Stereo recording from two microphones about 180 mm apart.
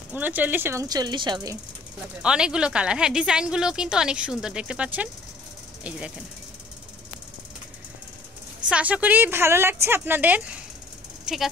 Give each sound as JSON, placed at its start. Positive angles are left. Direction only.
{"t": 0.1, "sound": "speech", "side_deg": -10}
{"t": 2.2, "sound": "a woman's voice", "side_deg": -5}
{"t": 8.6, "sound": "speech", "side_deg": -5}